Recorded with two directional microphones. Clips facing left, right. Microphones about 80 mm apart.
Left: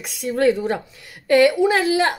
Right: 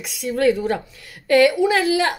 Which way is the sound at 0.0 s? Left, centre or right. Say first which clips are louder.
Even; left.